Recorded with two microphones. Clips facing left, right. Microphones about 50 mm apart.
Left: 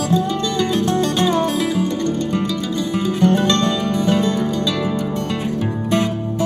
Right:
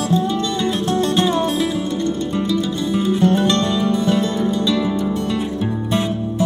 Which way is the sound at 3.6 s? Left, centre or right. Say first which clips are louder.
Right 1 dB; left.